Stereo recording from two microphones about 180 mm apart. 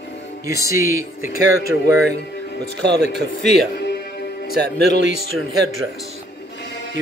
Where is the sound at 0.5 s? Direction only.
15° right (ahead or behind).